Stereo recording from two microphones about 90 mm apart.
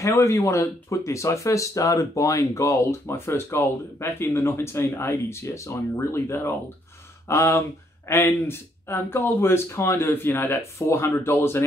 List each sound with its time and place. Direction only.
0.0 s speech: 35° left (ahead or behind)